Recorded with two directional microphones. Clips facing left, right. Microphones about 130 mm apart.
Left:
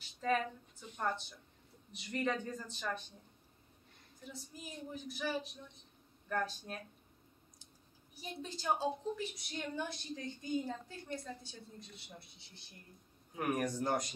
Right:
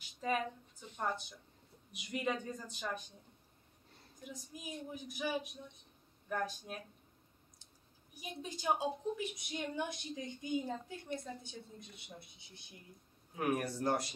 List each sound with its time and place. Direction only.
0.2 s a woman's voice: 10° right (ahead or behind)
4.2 s a woman's voice: 15° right (ahead or behind)
8.1 s a woman's voice: 15° right (ahead or behind)
13.4 s speech: 5° right (ahead or behind)